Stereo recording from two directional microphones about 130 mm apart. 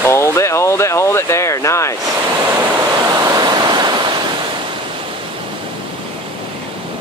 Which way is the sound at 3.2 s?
30° right (ahead or behind).